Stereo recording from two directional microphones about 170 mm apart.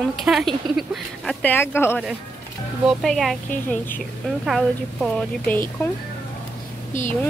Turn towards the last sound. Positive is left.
turn(degrees=45)  # may be behind; listen again after turning